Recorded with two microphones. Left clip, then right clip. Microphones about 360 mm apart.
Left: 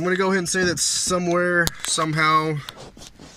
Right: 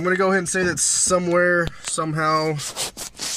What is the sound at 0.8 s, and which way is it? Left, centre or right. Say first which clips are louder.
Speech: right 1 dB; right.